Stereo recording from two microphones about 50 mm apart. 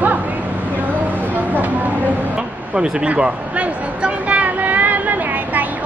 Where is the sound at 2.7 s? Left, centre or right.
Right.